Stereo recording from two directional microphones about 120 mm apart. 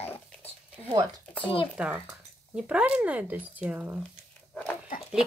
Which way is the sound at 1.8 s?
5° right (ahead or behind).